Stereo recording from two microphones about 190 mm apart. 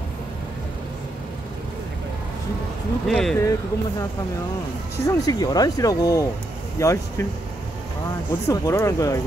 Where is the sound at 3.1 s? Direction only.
Centre (ahead or behind).